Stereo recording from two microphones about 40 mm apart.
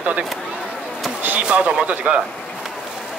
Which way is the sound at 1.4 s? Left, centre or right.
Right.